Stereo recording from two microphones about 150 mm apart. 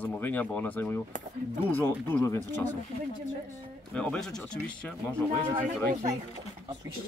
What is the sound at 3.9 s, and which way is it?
Speech, 5° left (ahead or behind).